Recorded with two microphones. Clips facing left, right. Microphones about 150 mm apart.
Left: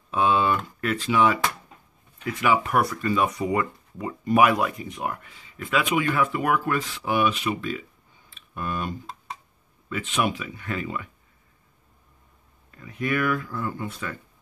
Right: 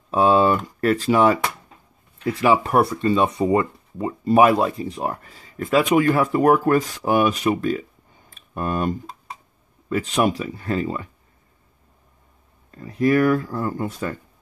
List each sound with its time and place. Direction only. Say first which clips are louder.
0.1 s speech: right 5 dB; 40° right (ahead or behind)
8.3 s clicking: right 6 dB; 45° right (ahead or behind)
9.8 s speech: right 6 dB; 40° right (ahead or behind)
12.7 s speech: right 9 dB; 35° right (ahead or behind)